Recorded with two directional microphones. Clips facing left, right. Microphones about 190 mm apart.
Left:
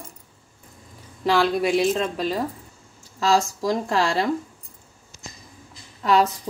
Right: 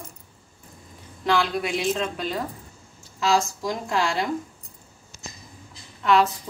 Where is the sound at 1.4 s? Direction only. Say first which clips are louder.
Left 6 dB; 35° left (ahead or behind).